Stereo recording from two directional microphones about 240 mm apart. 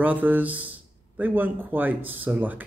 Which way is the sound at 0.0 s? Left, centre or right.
Centre.